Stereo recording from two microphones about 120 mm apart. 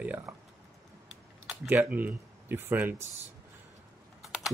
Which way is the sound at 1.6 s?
15° right (ahead or behind).